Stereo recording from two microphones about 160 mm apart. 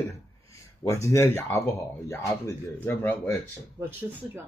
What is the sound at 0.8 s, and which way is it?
Speech, 20° left (ahead or behind).